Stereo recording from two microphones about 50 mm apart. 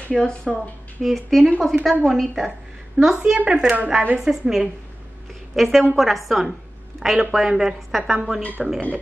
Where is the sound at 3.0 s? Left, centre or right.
Right.